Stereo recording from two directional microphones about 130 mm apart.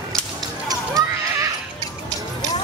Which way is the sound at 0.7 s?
30° right (ahead or behind).